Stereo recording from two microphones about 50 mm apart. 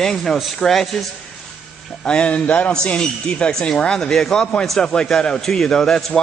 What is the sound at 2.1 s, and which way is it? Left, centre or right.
Speech, centre.